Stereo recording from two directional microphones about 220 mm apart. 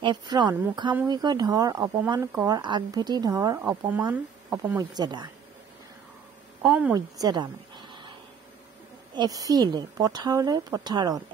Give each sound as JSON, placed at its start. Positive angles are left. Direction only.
{"t": 0.0, "sound": "a woman's voice", "side_deg": -20}
{"t": 6.9, "sound": "speech", "side_deg": -15}
{"t": 9.1, "sound": "speech", "side_deg": -15}